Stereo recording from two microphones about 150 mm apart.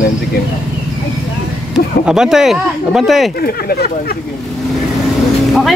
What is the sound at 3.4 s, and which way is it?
Speech, 90° left.